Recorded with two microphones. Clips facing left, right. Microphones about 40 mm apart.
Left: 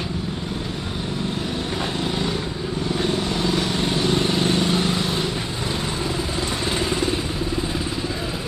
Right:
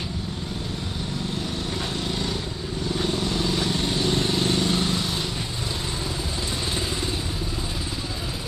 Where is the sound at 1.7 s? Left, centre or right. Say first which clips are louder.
Left 4 dB; left.